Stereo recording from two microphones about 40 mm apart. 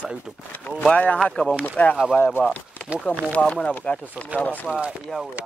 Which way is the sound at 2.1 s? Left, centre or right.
Left.